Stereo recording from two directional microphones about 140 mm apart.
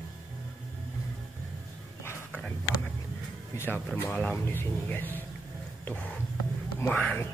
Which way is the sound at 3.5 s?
15° left (ahead or behind).